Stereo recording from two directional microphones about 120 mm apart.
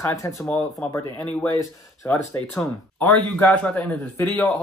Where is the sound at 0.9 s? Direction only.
15° left (ahead or behind).